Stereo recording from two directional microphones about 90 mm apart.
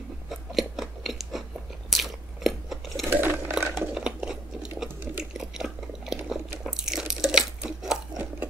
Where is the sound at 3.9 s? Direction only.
10° right (ahead or behind).